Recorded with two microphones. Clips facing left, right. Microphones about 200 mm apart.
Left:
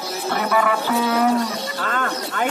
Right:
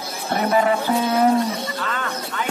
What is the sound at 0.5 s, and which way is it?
Speech, 25° right (ahead or behind).